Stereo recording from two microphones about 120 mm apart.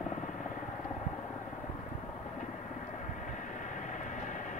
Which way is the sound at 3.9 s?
90° left.